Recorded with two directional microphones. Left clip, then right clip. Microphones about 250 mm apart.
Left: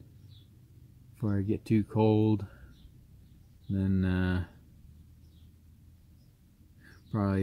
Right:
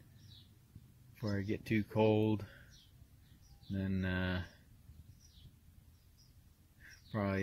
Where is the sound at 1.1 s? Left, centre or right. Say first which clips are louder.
Left 6 dB; centre.